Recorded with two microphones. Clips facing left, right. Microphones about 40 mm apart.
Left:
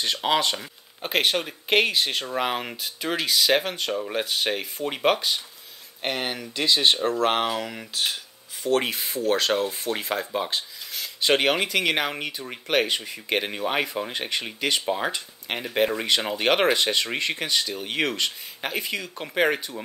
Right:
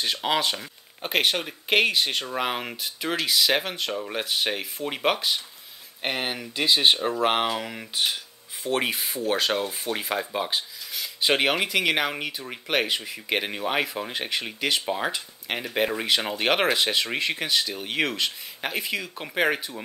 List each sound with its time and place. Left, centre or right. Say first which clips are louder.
0.0 s speech: left 2 dB; centre